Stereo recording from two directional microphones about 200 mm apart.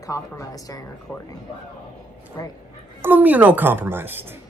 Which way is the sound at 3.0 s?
10° right (ahead or behind).